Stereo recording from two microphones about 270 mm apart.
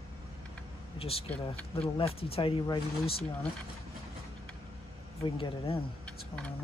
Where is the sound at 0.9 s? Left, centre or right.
Left.